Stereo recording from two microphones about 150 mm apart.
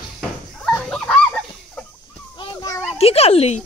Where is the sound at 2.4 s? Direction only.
25° left (ahead or behind).